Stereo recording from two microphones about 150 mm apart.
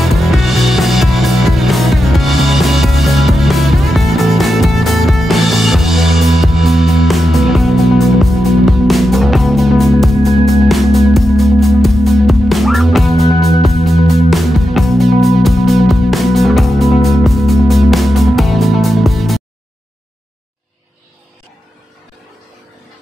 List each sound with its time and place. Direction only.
0.0 s music: centre (ahead or behind)